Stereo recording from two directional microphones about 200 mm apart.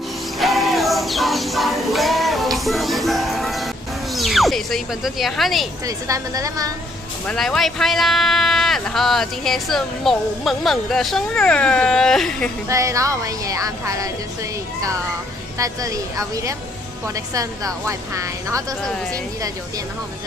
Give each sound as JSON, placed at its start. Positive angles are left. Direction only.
{"t": 0.4, "sound": "music", "side_deg": 0}
{"t": 5.9, "sound": "a woman's voice", "side_deg": -15}
{"t": 7.2, "sound": "speech", "side_deg": 0}
{"t": 12.6, "sound": "a woman's voice", "side_deg": -15}
{"t": 15.5, "sound": "a woman's voice", "side_deg": -15}